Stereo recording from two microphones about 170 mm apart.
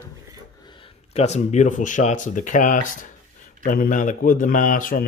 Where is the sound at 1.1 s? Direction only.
40° left (ahead or behind).